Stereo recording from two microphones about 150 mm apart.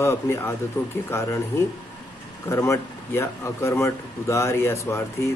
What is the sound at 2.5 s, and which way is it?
A man's voice, 20° left (ahead or behind).